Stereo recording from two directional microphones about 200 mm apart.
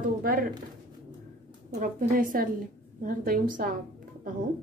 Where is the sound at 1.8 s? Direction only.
45° right (ahead or behind).